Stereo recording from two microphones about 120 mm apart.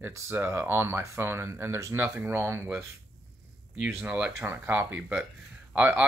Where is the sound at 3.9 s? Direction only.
15° right (ahead or behind).